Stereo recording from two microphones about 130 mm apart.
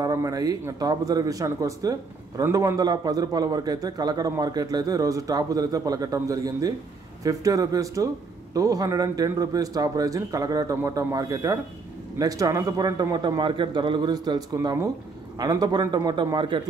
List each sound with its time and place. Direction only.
0.0 s a man's voice: 25° right (ahead or behind)